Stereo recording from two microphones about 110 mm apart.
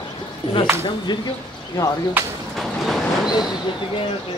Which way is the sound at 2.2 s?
20° right (ahead or behind).